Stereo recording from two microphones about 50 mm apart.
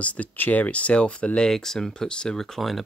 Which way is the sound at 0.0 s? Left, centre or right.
Left.